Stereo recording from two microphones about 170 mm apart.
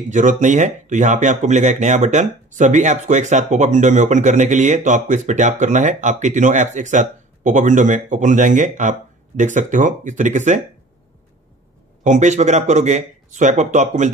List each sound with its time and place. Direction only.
0.1 s speech: 45° right (ahead or behind)
12.0 s speech: 45° right (ahead or behind)